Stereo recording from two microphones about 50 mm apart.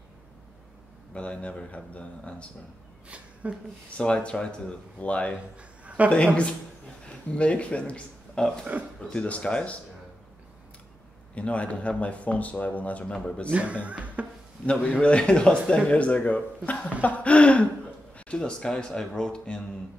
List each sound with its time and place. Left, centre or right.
1.1 s speech: left
3.4 s speech: right
3.9 s speech: left
5.6 s a sound: right
6.0 s speech: left
11.3 s speech: left
13.0 s speech: centre
13.5 s speech: right
14.7 s speech: left